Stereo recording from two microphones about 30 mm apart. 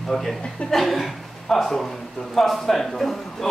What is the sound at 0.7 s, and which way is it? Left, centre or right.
Speech, centre.